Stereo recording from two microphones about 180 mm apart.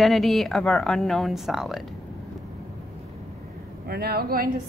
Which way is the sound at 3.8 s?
60° right (ahead or behind).